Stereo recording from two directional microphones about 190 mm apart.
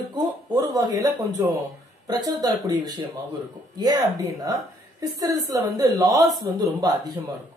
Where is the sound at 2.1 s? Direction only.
20° right (ahead or behind).